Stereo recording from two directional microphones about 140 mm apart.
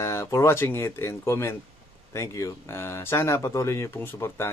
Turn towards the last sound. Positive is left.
turn(degrees=15)  # may be behind; listen again after turning